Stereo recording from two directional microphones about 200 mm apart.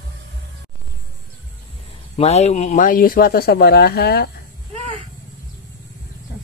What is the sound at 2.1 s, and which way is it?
Speech, 30° left (ahead or behind).